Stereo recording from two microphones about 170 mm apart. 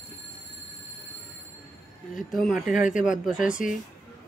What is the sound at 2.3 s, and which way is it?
Speech, centre (ahead or behind).